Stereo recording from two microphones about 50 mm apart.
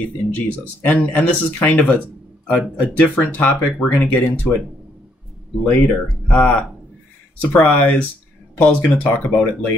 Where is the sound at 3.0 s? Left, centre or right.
Left.